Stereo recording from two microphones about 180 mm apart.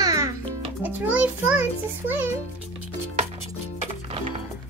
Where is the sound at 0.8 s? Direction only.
5° right (ahead or behind).